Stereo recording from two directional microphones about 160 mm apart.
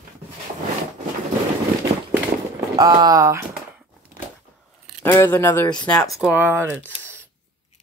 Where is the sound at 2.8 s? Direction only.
25° right (ahead or behind).